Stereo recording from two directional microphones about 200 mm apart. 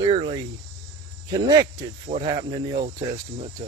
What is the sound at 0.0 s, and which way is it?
Speech, 25° right (ahead or behind).